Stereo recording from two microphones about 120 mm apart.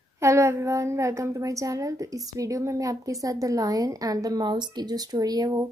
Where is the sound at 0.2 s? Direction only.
25° right (ahead or behind).